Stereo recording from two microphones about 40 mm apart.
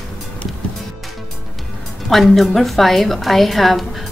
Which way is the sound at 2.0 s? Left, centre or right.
Centre.